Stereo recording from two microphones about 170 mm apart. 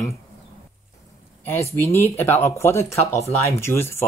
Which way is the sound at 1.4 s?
15° left (ahead or behind).